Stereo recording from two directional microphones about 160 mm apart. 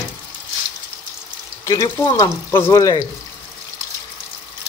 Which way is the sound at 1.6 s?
20° left (ahead or behind).